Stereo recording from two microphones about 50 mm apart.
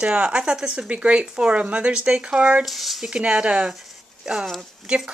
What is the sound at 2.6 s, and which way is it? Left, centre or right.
Speech, centre.